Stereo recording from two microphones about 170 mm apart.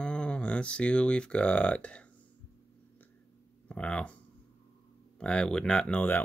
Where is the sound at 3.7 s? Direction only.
5° left (ahead or behind).